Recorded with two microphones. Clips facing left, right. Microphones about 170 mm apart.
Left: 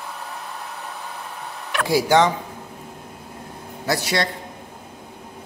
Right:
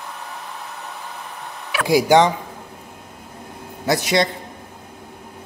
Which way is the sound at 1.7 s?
15° right (ahead or behind).